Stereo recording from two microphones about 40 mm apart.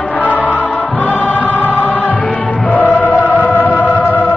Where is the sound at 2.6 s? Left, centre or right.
Left.